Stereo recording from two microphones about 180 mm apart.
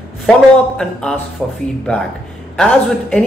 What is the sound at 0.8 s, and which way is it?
Speech, 5° left (ahead or behind).